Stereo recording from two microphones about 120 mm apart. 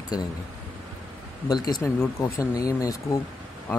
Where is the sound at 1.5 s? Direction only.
35° left (ahead or behind).